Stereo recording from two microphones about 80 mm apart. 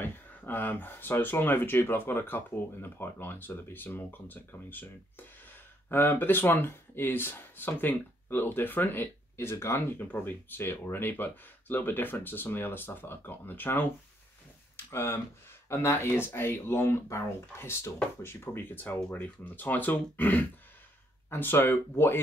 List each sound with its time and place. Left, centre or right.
0.0 s speech: left
14.9 s speech: left